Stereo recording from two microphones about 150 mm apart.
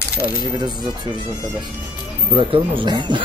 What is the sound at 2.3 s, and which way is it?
Speech, 35° right (ahead or behind).